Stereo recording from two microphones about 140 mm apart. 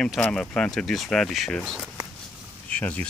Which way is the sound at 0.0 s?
5° left (ahead or behind).